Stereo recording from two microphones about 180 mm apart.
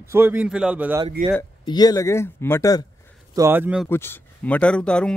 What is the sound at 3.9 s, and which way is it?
Speech, 10° left (ahead or behind).